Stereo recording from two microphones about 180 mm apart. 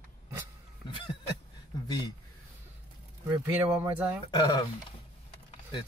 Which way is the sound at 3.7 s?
10° right (ahead or behind).